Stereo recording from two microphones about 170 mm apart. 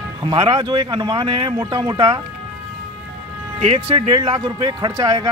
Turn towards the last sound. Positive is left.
turn(degrees=-25)  # may be behind; listen again after turning